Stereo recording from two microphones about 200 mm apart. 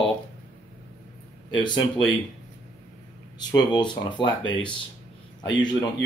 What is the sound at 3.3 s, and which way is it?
Speech, 20° left (ahead or behind).